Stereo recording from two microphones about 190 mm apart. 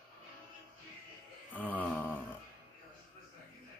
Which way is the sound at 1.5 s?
10° left (ahead or behind).